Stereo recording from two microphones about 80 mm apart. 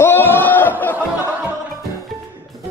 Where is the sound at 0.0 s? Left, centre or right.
Left.